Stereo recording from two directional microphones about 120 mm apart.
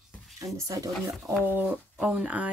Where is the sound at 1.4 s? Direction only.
15° right (ahead or behind).